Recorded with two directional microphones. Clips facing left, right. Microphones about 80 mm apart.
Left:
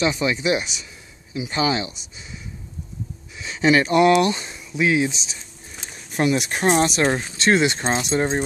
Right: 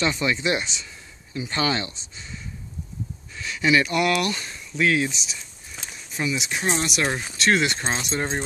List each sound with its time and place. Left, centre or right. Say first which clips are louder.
0.0 s speech: left 2 dB; centre
3.3 s speech: left 3 dB; left
5.2 s a sound: even; left
6.1 s speech: left 6 dB; left
7.3 s speech: left 1 dB; left